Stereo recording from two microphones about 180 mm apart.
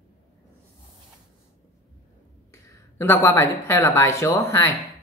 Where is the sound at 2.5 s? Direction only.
15° left (ahead or behind).